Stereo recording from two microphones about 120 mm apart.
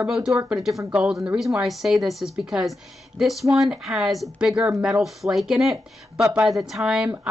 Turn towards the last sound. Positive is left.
turn(degrees=-5)  # may be behind; listen again after turning